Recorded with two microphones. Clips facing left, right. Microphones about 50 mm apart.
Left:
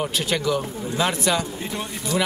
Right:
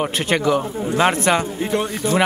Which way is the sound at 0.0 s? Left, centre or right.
Right.